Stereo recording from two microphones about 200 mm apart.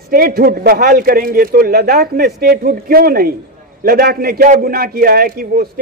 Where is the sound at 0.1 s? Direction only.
45° right (ahead or behind).